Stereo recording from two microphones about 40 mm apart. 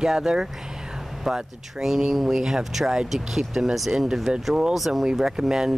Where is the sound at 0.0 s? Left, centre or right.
Centre.